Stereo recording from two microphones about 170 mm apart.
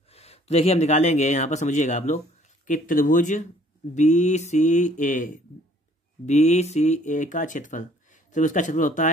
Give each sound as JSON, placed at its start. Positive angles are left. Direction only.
{"t": 0.1, "sound": "speech", "side_deg": 35}